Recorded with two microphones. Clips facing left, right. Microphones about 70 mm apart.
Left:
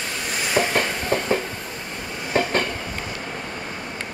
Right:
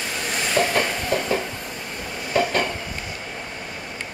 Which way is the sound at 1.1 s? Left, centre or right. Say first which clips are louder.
Left 1 dB; left.